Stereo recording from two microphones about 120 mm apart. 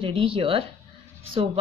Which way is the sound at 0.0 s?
50° right (ahead or behind).